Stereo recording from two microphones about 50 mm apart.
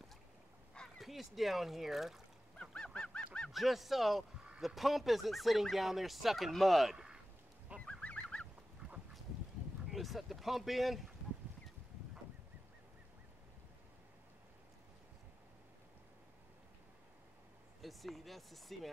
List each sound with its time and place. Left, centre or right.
0.9 s speech: centre
2.6 s goose: centre
3.5 s speech: centre
7.8 s goose: left
9.8 s speech: centre
17.8 s speech: centre